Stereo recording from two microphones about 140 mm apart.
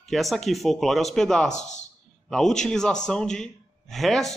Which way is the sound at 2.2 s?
5° left (ahead or behind).